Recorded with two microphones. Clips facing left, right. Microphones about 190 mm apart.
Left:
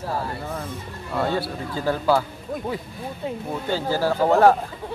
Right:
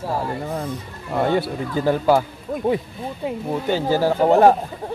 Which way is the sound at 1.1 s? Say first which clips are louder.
Right 4 dB; 20° right (ahead or behind).